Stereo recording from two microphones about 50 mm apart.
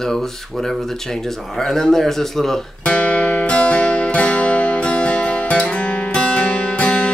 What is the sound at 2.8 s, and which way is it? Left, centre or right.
Music, left.